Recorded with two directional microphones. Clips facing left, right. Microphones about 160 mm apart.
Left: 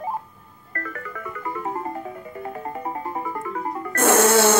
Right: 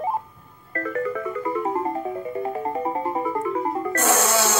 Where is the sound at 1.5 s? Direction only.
25° right (ahead or behind).